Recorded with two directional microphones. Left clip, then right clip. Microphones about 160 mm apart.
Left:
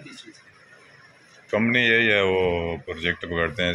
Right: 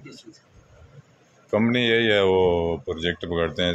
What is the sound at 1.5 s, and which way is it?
A man's voice, 20° right (ahead or behind).